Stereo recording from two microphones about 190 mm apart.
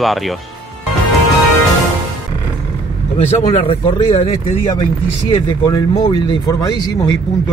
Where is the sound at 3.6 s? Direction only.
25° left (ahead or behind).